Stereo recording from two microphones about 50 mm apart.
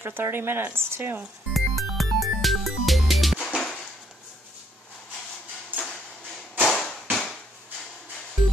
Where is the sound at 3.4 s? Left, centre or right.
Centre.